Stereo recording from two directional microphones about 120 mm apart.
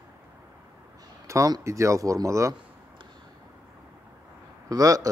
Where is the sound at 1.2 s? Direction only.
30° right (ahead or behind).